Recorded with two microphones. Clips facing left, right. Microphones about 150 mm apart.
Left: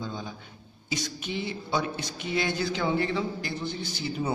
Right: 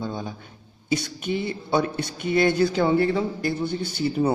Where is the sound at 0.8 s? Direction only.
55° right (ahead or behind).